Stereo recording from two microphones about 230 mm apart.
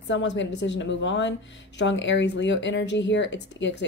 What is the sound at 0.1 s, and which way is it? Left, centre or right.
Speech, left.